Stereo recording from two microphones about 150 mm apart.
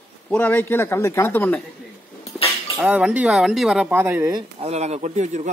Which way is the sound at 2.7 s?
10° right (ahead or behind).